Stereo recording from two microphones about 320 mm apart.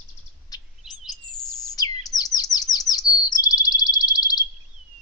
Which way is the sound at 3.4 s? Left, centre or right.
Centre.